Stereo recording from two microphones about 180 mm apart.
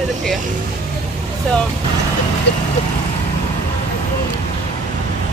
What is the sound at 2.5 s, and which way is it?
Speech, 70° left (ahead or behind).